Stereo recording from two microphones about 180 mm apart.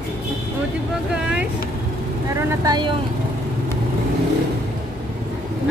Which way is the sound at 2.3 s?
20° right (ahead or behind).